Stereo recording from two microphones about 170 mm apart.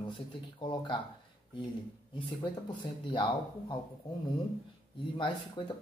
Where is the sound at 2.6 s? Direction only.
25° left (ahead or behind).